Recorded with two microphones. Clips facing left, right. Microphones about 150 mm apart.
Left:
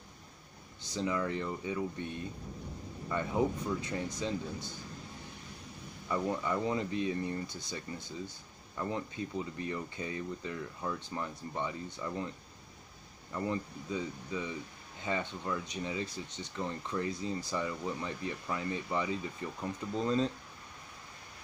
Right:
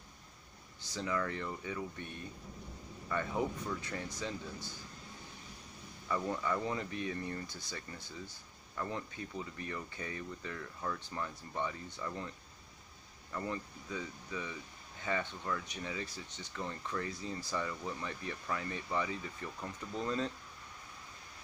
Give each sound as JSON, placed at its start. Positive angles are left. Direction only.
{"t": 0.8, "sound": "speech", "side_deg": 20}
{"t": 6.0, "sound": "speech", "side_deg": 15}
{"t": 13.3, "sound": "speech", "side_deg": 20}